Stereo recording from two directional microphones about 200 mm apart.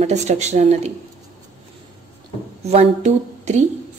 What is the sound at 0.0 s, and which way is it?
Speech, 35° right (ahead or behind).